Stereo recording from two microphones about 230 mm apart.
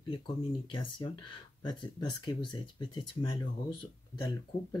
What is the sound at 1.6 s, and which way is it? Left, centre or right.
Speech, centre.